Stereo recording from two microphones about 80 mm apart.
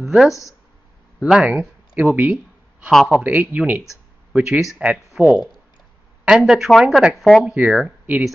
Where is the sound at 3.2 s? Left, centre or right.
Centre.